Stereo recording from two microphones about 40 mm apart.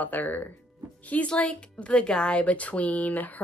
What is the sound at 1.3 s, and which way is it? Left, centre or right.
A woman's voice, left.